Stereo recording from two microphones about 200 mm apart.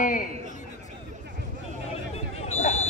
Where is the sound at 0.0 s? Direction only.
45° left (ahead or behind).